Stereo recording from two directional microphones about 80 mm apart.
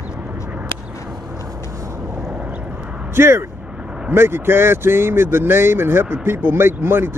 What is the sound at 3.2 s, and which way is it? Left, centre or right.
Speech, right.